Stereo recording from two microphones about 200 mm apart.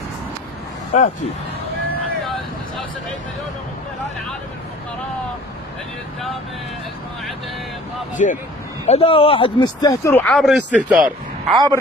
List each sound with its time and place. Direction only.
0.9 s speech: 35° left (ahead or behind)
8.2 s speech: 40° left (ahead or behind); by 11.1 s 5° right (ahead or behind)
11.5 s a man's voice: 20° right (ahead or behind)